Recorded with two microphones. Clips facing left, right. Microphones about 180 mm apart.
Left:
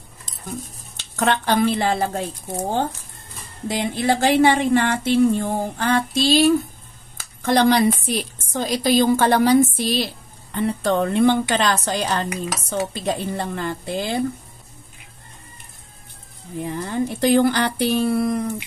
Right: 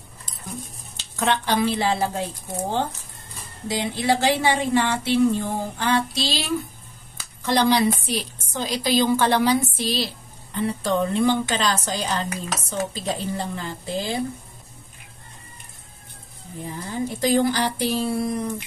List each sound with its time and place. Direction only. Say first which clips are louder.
0.9 s a woman's voice: left 2 dB; 55° left (ahead or behind)
3.6 s a woman's voice: left 2 dB; 50° left (ahead or behind)
16.6 s a woman's voice: left 4 dB; 65° left (ahead or behind)